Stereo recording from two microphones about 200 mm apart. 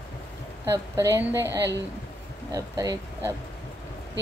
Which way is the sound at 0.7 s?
15° right (ahead or behind).